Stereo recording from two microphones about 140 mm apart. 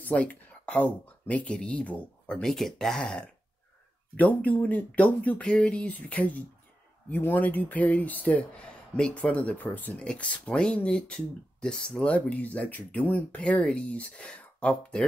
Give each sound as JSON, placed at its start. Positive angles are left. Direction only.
{"t": 0.0, "sound": "speech", "side_deg": 10}